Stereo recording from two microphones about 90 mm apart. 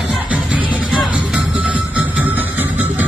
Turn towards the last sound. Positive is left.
turn(degrees=-20)  # may be behind; listen again after turning